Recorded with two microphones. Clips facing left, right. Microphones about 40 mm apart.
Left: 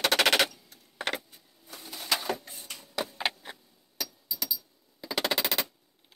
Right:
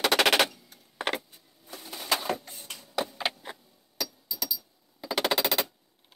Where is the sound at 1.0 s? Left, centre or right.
Centre.